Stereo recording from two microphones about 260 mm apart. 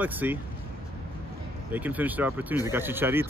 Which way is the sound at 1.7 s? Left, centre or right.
Centre.